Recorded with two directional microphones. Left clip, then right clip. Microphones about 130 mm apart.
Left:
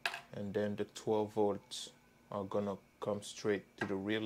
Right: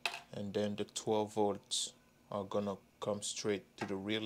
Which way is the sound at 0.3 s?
20° right (ahead or behind).